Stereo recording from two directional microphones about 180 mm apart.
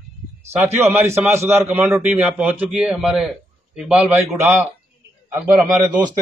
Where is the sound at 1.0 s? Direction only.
15° right (ahead or behind).